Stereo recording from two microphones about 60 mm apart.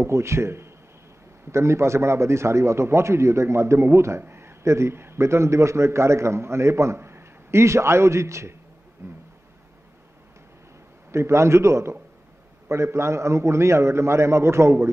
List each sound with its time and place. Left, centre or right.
0.0 s a man's voice: right
11.1 s a man's voice: right